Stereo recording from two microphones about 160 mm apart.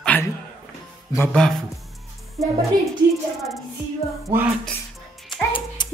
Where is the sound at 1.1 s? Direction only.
5° left (ahead or behind).